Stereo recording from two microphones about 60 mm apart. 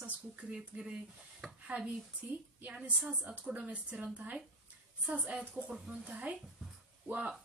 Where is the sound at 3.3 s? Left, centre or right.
Right.